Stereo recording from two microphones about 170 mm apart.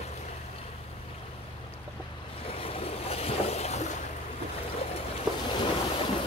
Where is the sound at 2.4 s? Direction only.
35° left (ahead or behind).